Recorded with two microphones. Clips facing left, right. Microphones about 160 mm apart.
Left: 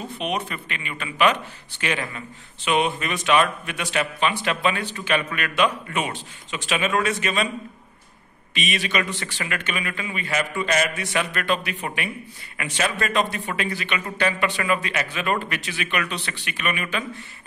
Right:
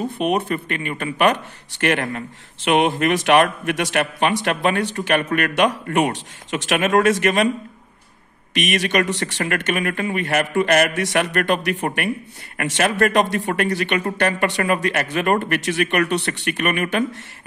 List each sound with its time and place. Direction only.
0.1 s speech: 55° right (ahead or behind)
5.9 s a man's voice: 55° right (ahead or behind); by 7.4 s 70° right (ahead or behind)
8.7 s a man's voice: 70° right (ahead or behind)
9.4 s a man's voice: 50° right (ahead or behind); by 13.5 s 75° right (ahead or behind)
13.6 s speech: 60° right (ahead or behind)